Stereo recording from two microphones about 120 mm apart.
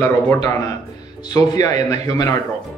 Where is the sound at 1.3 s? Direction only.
30° left (ahead or behind).